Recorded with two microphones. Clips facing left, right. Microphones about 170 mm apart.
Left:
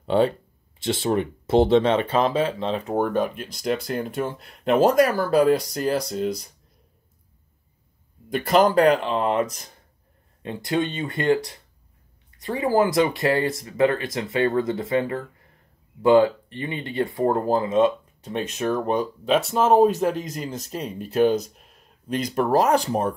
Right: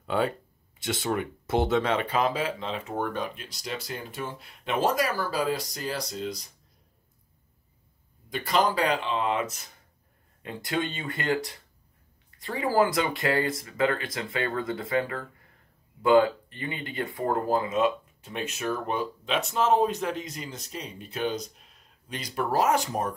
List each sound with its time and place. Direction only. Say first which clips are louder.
0.0 s speech: left 7 dB; 30° left (ahead or behind); by 5.9 s 55° left (ahead or behind)
8.3 s speech: left 7 dB; 55° left (ahead or behind)
10.4 s speech: left 6 dB; 25° left (ahead or behind)